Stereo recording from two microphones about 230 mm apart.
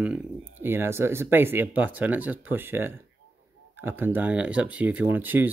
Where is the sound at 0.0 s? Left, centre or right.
Centre.